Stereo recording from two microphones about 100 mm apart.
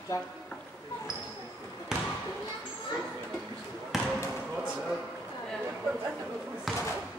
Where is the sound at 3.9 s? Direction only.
Centre (ahead or behind).